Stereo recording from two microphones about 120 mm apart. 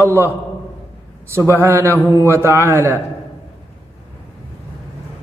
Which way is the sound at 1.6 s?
20° right (ahead or behind).